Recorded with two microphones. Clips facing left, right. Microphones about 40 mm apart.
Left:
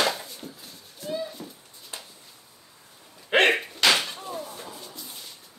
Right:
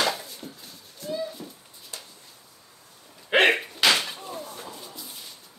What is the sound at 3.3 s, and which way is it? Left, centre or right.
Door, centre.